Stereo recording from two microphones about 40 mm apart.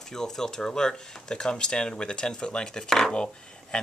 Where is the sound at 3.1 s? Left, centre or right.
Left.